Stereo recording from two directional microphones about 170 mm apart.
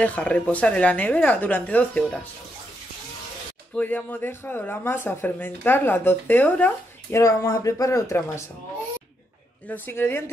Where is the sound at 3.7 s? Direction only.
10° left (ahead or behind).